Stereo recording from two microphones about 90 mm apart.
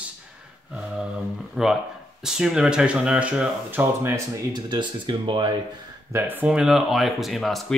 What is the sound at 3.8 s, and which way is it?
Speech, 25° right (ahead or behind).